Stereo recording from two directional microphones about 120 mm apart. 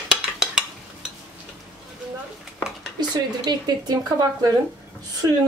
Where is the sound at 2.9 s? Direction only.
35° right (ahead or behind).